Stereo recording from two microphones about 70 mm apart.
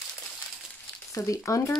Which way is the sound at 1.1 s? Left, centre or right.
Left.